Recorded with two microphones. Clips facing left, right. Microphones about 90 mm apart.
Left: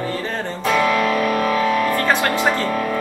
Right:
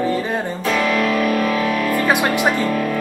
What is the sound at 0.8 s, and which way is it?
Music, 35° left (ahead or behind).